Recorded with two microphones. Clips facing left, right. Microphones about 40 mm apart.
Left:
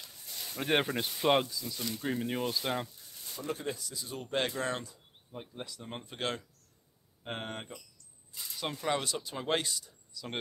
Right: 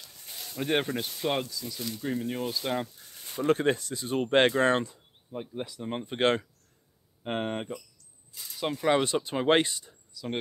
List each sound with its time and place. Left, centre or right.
0.4 s speech: centre
3.3 s speech: right
5.3 s speech: centre
6.0 s speech: right
7.2 s speech: right
8.5 s speech: centre
8.8 s speech: right
10.1 s speech: centre